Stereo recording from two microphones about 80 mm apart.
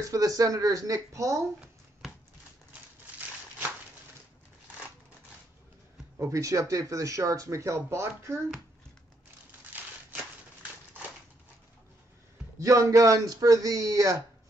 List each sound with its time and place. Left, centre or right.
0.0 s speech: right
6.1 s speech: right
9.7 s a sound: right
12.5 s speech: right